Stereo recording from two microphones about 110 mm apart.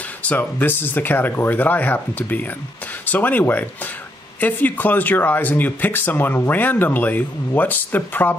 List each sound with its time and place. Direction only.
0.2 s speech: 15° left (ahead or behind)